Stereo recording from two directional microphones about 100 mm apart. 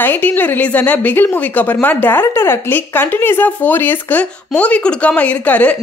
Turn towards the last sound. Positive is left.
turn(degrees=15)  # may be behind; listen again after turning